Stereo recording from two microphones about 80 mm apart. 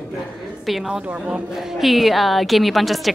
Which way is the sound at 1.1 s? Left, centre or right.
Centre.